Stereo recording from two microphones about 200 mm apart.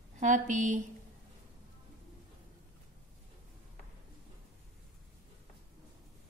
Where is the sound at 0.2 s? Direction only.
40° right (ahead or behind).